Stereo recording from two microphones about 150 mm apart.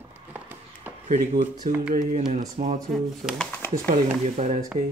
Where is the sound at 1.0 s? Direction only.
50° right (ahead or behind).